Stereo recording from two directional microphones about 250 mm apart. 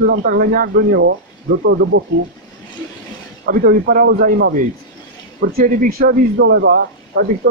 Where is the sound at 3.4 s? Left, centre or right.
Right.